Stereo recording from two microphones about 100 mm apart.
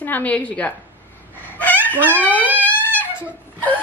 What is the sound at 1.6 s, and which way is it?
Dog, 15° left (ahead or behind).